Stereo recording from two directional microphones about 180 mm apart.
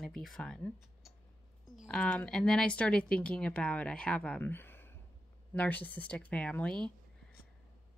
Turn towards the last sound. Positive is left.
turn(degrees=5)  # may be behind; listen again after turning